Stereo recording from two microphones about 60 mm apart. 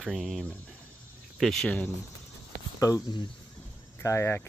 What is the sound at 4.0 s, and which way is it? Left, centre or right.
Speech, left.